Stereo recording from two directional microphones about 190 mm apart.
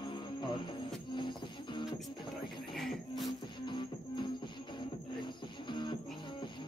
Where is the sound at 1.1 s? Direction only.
25° left (ahead or behind).